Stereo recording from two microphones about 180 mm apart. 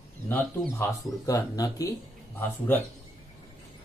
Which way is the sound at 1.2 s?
20° left (ahead or behind).